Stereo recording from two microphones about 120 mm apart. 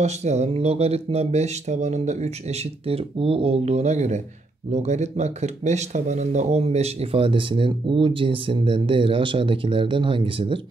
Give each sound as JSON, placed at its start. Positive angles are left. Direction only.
{"t": 0.0, "sound": "speech", "side_deg": -70}